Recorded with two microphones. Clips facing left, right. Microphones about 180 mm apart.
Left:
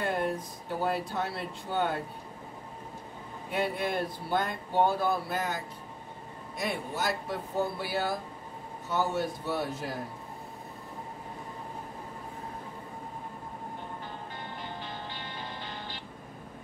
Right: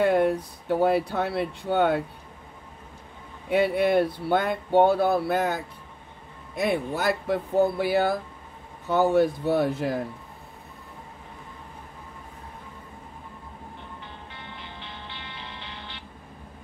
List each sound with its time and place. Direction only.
0.0 s speech: 65° right (ahead or behind)
3.4 s speech: 65° right (ahead or behind)
14.3 s vehicle: 45° left (ahead or behind)